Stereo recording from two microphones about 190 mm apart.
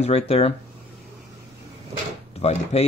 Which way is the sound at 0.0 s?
35° left (ahead or behind).